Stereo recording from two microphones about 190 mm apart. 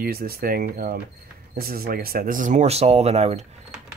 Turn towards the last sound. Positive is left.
turn(degrees=-35)  # may be behind; listen again after turning